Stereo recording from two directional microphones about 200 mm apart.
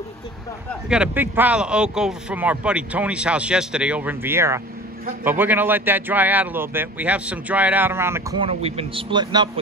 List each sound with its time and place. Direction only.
0.8 s speech: 5° right (ahead or behind)
8.4 s a man's voice: 30° right (ahead or behind)